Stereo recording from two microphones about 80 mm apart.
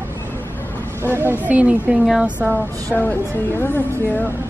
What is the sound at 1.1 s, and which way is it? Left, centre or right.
Speech, left.